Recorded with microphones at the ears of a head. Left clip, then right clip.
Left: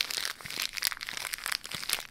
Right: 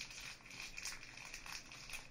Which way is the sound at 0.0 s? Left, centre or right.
Left.